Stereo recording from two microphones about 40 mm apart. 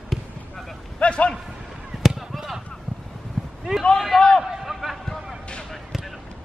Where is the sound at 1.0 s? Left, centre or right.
Left.